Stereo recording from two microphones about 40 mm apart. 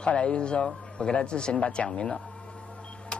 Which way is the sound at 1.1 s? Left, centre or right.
Left.